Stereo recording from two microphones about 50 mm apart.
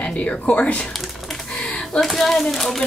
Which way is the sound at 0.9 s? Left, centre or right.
Centre.